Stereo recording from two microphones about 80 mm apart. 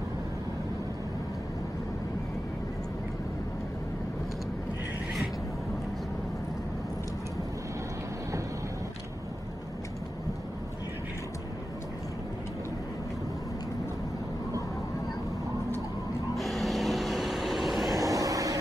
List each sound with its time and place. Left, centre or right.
16.3 s vehicle: centre
17.9 s vehicle: right